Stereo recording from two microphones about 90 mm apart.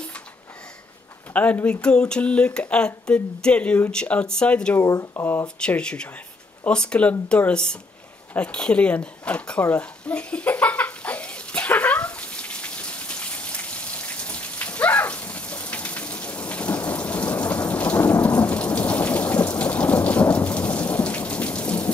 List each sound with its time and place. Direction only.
1.3 s speech: 20° left (ahead or behind)
4.7 s speech: 30° left (ahead or behind)
5.6 s speech: 10° left (ahead or behind)
8.3 s a sound: 15° left (ahead or behind)